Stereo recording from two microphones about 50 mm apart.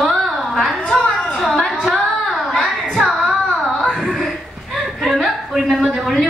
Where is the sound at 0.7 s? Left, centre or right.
Centre.